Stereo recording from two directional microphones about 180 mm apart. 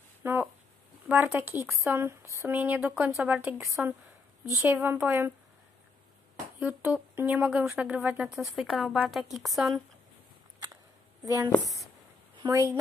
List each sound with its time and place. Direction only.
0.2 s a sound: 10° right (ahead or behind)
1.0 s speech: 10° right (ahead or behind)
6.6 s a woman's voice: 10° right (ahead or behind)
11.2 s speech: 20° right (ahead or behind)
11.5 s speech: centre (ahead or behind)
12.4 s a woman's voice: 20° right (ahead or behind)